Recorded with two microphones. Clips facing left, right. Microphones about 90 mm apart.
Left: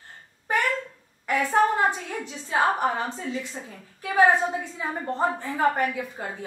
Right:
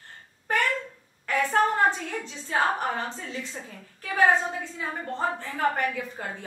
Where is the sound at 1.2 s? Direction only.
15° left (ahead or behind).